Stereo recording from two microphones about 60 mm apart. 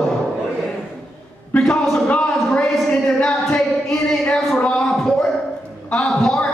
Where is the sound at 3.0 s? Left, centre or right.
Centre.